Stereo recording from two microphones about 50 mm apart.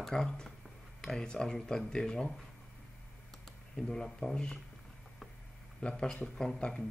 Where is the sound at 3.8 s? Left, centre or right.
Centre.